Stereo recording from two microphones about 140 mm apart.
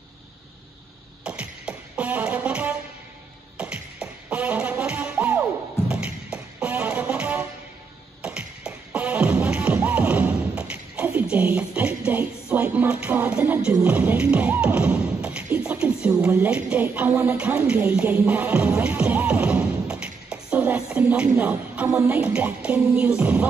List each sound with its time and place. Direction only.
1.2 s music: 5° right (ahead or behind)